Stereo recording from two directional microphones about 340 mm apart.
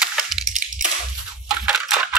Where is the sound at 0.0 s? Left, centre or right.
Centre.